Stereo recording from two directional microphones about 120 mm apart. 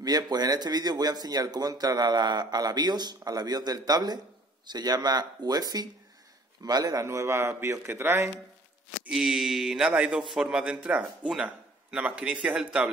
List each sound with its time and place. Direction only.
0.0 s a man's voice: 35° right (ahead or behind)
9.0 s a man's voice: 5° right (ahead or behind)